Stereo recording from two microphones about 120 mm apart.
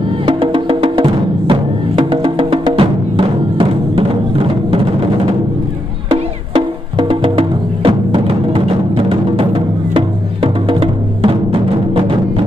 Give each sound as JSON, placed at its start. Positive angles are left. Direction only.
{"t": 0.3, "sound": "music", "side_deg": -45}